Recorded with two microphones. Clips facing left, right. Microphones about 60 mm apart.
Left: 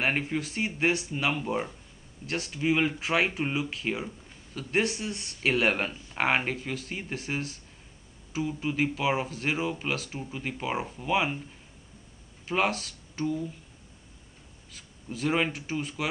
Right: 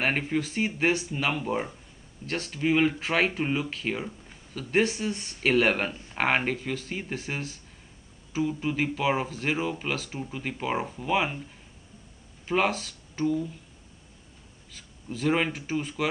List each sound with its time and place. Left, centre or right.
0.0 s speech: centre
12.4 s speech: centre
14.7 s speech: centre